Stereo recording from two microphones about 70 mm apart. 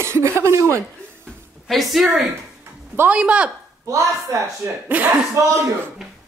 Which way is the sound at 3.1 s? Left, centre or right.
Centre.